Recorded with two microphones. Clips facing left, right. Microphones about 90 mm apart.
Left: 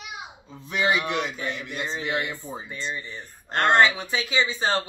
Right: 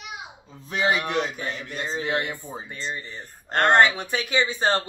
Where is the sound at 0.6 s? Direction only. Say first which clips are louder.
Even; 35° right (ahead or behind).